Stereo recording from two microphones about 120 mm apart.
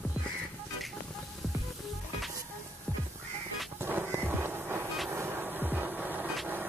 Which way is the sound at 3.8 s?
20° right (ahead or behind).